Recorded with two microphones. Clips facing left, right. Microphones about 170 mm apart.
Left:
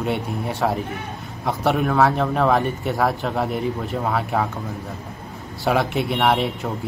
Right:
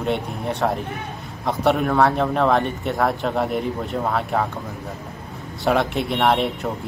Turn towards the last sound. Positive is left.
turn(degrees=0)  # may be behind; listen again after turning